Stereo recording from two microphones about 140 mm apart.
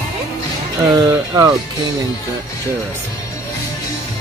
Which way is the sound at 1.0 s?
25° right (ahead or behind).